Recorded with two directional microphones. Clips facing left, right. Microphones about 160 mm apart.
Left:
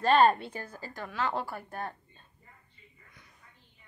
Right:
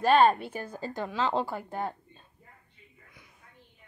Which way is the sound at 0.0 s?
Centre (ahead or behind).